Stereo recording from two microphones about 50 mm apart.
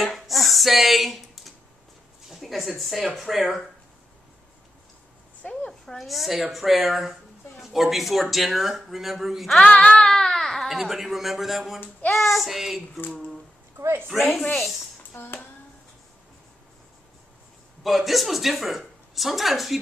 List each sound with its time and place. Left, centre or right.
0.0 s a sound: centre
2.2 s speech: centre
5.4 s a woman's voice: left
5.7 s speech: centre
9.6 s speech: left; by 13.0 s centre
14.1 s speech: centre
15.1 s hands: left
17.8 s speech: centre